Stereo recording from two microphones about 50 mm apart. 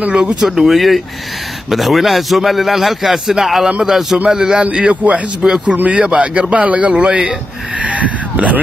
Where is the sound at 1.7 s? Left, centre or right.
Centre.